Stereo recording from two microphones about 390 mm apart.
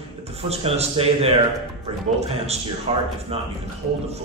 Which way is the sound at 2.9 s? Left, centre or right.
Centre.